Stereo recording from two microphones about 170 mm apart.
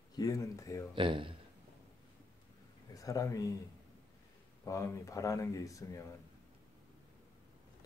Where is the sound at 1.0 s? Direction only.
30° right (ahead or behind).